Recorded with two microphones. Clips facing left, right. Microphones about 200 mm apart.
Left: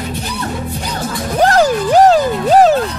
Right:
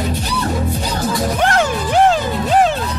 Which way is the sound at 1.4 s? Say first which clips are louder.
Left 9 dB; 35° left (ahead or behind).